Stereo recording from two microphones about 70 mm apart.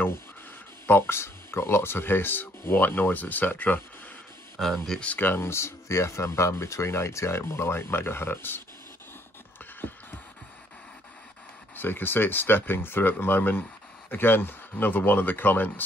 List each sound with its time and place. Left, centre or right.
0.8 s speech: left
4.6 s speech: centre
5.0 s speech: left
11.7 s speech: left